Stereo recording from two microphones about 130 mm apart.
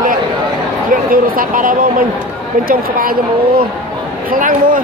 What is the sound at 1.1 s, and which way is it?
Speech, 90° right.